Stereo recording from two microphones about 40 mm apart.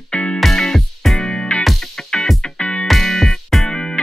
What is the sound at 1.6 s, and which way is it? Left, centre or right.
Music, centre.